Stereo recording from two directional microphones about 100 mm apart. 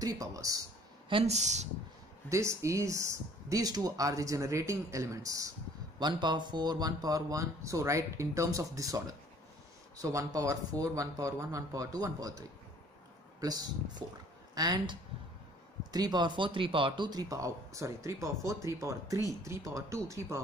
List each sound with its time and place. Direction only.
0.0 s speech: 35° right (ahead or behind)
1.0 s speech: 75° right (ahead or behind)
2.2 s speech: 30° right (ahead or behind)
5.9 s speech: 50° right (ahead or behind); by 20.3 s 30° right (ahead or behind)